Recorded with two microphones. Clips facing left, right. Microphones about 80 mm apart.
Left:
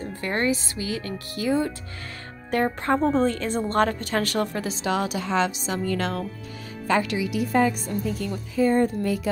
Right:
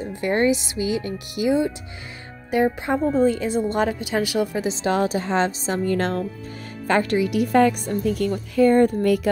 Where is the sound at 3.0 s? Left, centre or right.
Left.